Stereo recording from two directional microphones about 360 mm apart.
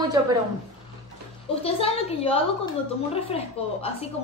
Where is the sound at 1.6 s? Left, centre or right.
Centre.